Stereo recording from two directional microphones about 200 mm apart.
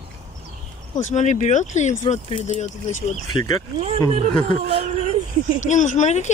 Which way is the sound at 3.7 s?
30° right (ahead or behind).